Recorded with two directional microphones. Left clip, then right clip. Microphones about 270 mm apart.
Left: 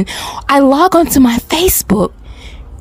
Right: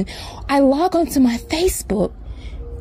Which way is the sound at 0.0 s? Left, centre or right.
Left.